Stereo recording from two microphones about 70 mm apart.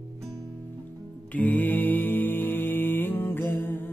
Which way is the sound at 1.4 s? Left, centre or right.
Left.